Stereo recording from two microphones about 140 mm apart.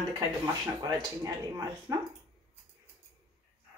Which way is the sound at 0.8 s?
25° right (ahead or behind).